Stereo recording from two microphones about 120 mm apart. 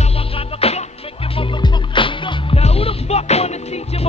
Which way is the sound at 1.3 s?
45° left (ahead or behind).